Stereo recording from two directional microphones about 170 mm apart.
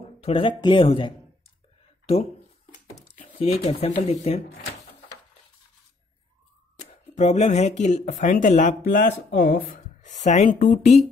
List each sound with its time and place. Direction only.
0.2 s speech: 30° left (ahead or behind)
3.3 s speech: 35° left (ahead or behind)
6.8 s speech: 40° left (ahead or behind)